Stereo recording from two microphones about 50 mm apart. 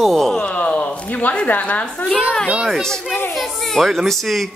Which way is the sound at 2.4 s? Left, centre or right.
Centre.